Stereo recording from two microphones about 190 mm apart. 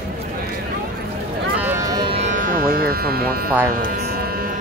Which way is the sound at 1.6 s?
10° right (ahead or behind).